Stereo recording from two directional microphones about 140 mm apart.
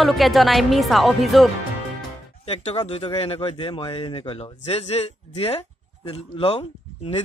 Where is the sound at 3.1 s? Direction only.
40° left (ahead or behind).